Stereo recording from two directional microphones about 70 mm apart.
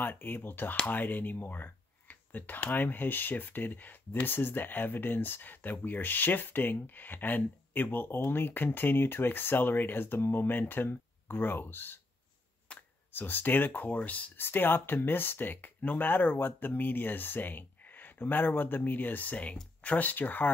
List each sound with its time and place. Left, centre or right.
0.0 s speech: left